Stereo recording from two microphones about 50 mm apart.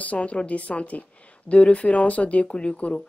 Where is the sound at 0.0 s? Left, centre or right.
Left.